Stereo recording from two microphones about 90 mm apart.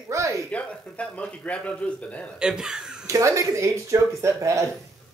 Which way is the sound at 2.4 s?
5° right (ahead or behind).